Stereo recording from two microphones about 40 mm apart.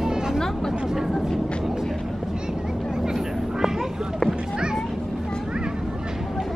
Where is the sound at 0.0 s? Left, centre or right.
Centre.